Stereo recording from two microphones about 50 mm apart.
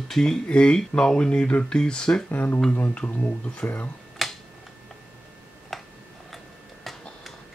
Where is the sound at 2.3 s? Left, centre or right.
Left.